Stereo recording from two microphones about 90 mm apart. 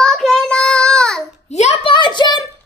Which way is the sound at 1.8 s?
60° left (ahead or behind).